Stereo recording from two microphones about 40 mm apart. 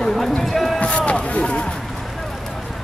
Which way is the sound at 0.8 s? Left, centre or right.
Left.